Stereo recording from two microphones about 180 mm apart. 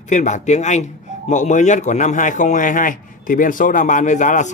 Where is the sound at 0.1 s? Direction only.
40° left (ahead or behind).